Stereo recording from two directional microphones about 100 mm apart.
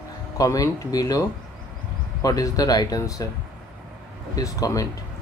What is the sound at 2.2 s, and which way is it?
Speech, 35° left (ahead or behind).